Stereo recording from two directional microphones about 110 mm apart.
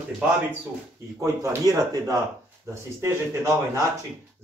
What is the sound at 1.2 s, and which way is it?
Speech, 25° right (ahead or behind).